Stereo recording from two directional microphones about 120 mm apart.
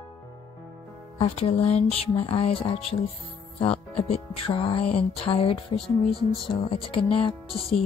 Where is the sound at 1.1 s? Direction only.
60° left (ahead or behind).